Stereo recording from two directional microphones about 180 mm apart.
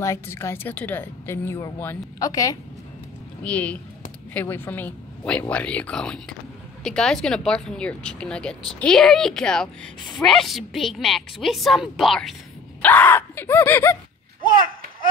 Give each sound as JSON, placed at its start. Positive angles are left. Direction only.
{"t": 0.0, "sound": "a woman's voice", "side_deg": 15}
{"t": 3.4, "sound": "a woman's voice", "side_deg": 5}
{"t": 14.5, "sound": "a sound", "side_deg": -50}